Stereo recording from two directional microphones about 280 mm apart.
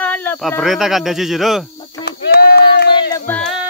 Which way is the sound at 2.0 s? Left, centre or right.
Left.